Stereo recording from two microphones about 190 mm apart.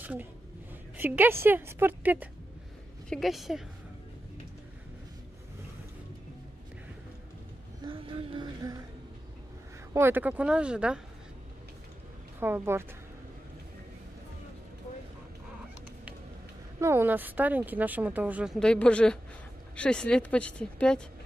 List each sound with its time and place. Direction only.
0.0 s a woman's voice: 10° right (ahead or behind)
7.8 s a sound: 25° right (ahead or behind)
9.9 s speech: 10° right (ahead or behind)
12.4 s speech: 10° right (ahead or behind)
16.8 s speech: 10° right (ahead or behind); by 21.0 s 5° left (ahead or behind)